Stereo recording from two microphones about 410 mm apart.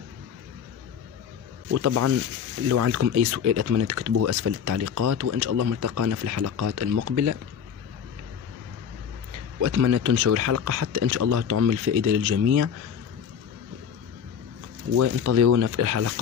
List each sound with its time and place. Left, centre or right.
1.7 s speech: right
9.6 s speech: right
15.0 s speech: right